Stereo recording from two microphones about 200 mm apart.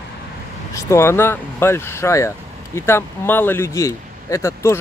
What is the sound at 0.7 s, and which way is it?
Speech, 15° left (ahead or behind).